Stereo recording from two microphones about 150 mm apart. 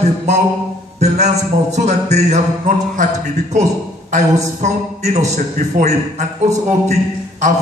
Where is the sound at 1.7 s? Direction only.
50° right (ahead or behind).